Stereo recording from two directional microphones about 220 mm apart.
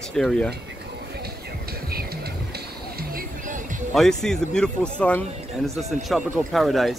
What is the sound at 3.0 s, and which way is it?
Music, 40° right (ahead or behind).